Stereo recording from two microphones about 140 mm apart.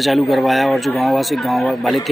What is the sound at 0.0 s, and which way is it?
Speech, centre (ahead or behind).